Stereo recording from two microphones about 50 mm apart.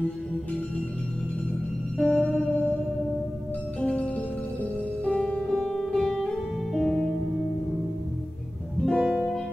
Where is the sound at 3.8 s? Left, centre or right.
Left; by 7.1 s centre.